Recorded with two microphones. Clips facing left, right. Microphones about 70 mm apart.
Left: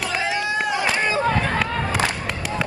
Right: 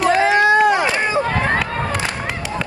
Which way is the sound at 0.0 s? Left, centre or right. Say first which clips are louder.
Right 10 dB; right.